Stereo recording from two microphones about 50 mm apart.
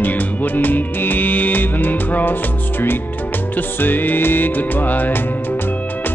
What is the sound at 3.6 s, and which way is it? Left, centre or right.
Music, left.